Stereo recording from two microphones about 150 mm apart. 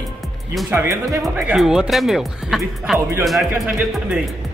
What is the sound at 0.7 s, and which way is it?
Speech, 15° right (ahead or behind).